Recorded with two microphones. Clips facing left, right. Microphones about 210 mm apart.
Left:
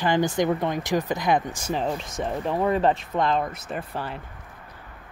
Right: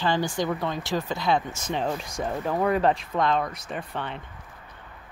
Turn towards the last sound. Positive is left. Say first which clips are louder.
# left 1 dB
turn(degrees=5)  # may be behind; listen again after turning